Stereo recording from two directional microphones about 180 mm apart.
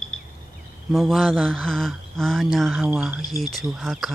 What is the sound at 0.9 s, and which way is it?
Speech, centre (ahead or behind).